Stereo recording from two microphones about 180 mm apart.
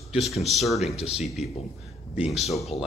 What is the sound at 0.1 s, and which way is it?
Speech, centre (ahead or behind).